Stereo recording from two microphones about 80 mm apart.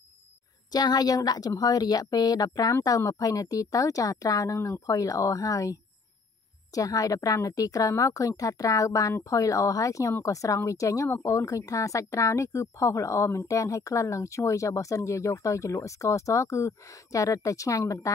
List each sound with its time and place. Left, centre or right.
0.7 s a woman's voice: left